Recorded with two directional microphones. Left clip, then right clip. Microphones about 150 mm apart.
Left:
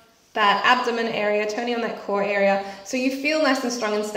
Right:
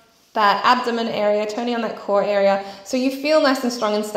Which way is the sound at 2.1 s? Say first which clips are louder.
Right 4 dB; 30° right (ahead or behind).